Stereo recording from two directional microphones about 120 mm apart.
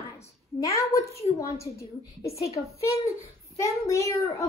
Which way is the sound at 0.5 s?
25° left (ahead or behind).